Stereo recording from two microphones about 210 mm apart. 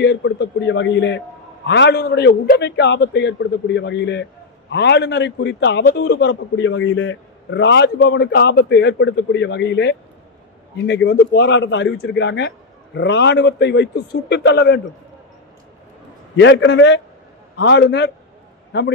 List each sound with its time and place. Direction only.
0.0 s a man's voice: 55° left (ahead or behind)
16.3 s a man's voice: 60° left (ahead or behind)